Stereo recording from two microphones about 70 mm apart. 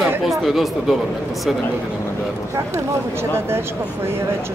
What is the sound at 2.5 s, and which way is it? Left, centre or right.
Speech, right.